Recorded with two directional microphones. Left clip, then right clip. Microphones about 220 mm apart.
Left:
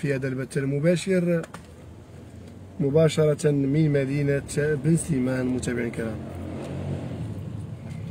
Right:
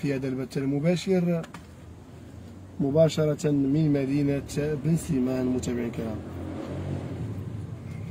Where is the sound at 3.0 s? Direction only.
35° left (ahead or behind).